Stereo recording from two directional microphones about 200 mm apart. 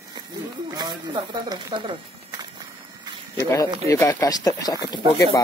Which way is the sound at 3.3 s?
15° left (ahead or behind).